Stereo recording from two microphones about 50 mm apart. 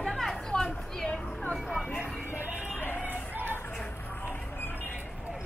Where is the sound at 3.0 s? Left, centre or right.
Right.